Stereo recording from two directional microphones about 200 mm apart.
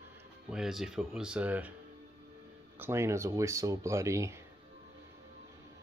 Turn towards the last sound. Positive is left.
turn(degrees=-15)  # may be behind; listen again after turning